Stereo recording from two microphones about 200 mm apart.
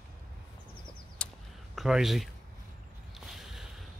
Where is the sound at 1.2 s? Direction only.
5° left (ahead or behind).